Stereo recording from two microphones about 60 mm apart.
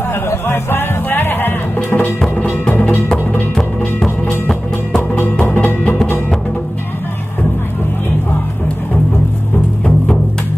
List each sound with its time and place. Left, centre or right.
0.1 s music: left
2.1 s music: centre
5.1 s music: left